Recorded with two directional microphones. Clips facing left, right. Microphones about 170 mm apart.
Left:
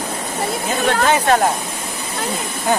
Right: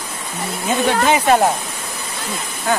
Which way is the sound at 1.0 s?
5° right (ahead or behind).